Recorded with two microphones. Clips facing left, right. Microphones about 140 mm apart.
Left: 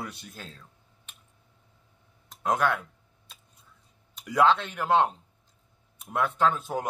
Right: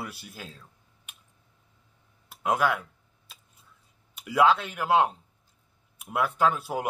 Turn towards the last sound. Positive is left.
turn(degrees=-10)  # may be behind; listen again after turning